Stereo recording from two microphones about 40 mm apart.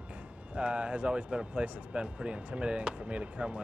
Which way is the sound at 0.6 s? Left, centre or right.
Right.